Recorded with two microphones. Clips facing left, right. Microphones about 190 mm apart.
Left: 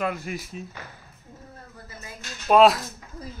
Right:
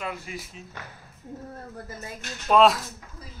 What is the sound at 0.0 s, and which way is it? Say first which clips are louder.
Speech: left 6 dB; 50° left (ahead or behind).